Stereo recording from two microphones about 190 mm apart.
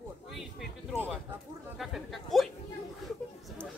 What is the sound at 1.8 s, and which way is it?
Speech, centre (ahead or behind).